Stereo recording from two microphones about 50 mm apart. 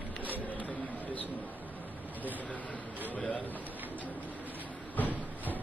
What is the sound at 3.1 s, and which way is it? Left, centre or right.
Speech, left.